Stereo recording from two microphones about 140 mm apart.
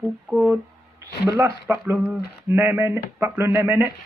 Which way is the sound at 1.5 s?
20° right (ahead or behind).